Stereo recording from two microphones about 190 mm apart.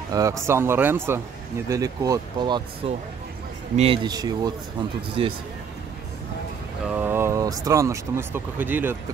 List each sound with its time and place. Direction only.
0.1 s speech: 15° right (ahead or behind)
6.9 s speech: 10° right (ahead or behind)